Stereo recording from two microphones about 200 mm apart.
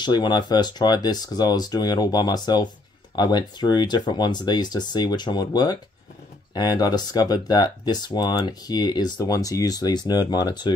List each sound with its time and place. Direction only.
0.0 s speech: 20° left (ahead or behind)